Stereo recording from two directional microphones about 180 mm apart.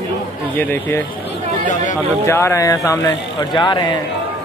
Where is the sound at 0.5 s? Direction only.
10° left (ahead or behind).